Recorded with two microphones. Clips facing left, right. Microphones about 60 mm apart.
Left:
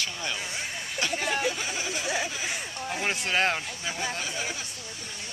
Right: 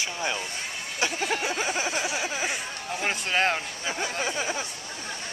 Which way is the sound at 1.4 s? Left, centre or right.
Right.